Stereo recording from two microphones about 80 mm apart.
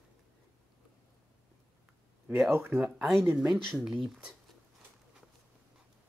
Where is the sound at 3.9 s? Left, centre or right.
Centre.